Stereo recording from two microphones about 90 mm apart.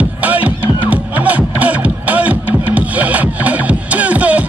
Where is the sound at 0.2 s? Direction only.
20° right (ahead or behind).